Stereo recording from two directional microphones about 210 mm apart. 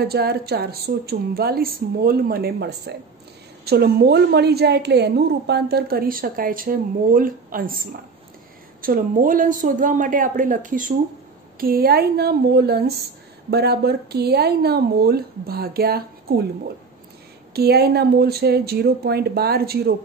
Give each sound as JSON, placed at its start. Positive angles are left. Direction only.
{"t": 0.0, "sound": "a woman's voice", "side_deg": -50}
{"t": 17.6, "sound": "a woman's voice", "side_deg": -50}